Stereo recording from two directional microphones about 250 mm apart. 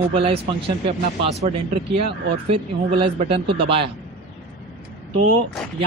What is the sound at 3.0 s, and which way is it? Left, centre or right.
Speech, right.